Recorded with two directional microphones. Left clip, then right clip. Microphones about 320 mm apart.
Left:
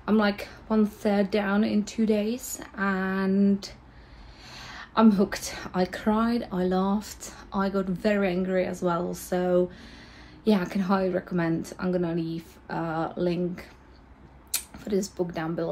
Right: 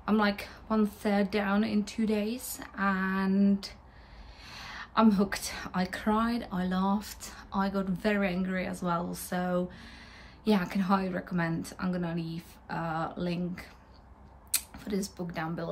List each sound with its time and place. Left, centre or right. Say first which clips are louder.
0.0 s a woman's voice: left 3 dB; centre